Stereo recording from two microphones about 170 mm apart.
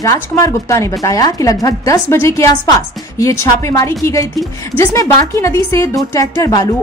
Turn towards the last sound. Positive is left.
turn(degrees=15)  # may be behind; listen again after turning